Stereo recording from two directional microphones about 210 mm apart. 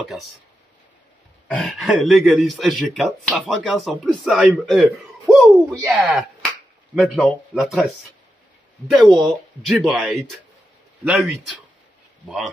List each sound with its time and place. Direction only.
1.5 s speech: centre (ahead or behind)
8.9 s speech: centre (ahead or behind)